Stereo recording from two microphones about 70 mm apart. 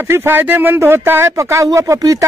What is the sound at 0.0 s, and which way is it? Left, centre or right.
Speech, right.